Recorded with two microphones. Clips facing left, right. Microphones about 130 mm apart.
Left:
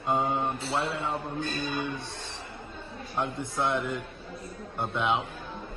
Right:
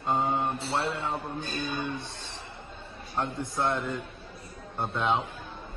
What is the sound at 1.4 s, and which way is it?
Speech, 55° left (ahead or behind).